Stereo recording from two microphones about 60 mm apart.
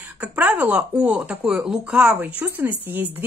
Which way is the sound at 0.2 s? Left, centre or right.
Right.